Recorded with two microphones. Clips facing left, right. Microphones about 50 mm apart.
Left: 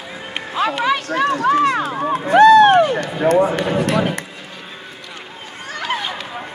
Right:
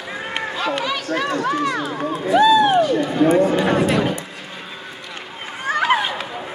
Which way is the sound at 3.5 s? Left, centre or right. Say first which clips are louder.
Right 1 dB; left.